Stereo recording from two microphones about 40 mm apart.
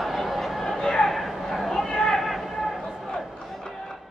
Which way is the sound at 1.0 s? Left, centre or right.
Centre.